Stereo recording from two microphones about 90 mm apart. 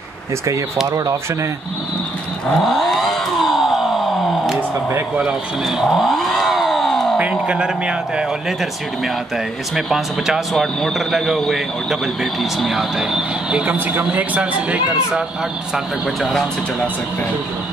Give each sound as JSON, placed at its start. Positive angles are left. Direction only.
{"t": 0.8, "sound": "speech", "side_deg": -40}
{"t": 2.5, "sound": "a sound", "side_deg": 0}
{"t": 4.6, "sound": "speech", "side_deg": -20}
{"t": 5.2, "sound": "a sound", "side_deg": 0}
{"t": 7.2, "sound": "speech", "side_deg": -15}
{"t": 9.8, "sound": "speech", "side_deg": -5}